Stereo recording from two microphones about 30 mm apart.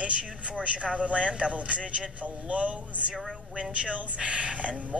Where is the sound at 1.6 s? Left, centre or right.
Right.